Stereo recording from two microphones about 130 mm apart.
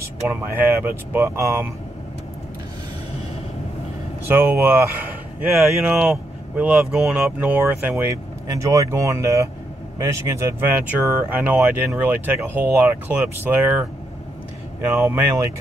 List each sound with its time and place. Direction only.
1.1 s speech: 20° right (ahead or behind)
4.3 s speech: 15° right (ahead or behind)